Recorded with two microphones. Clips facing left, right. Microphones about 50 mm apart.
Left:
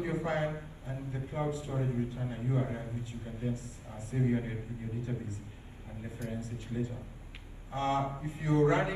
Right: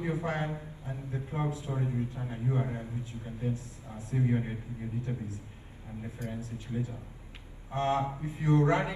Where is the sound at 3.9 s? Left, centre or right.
Right.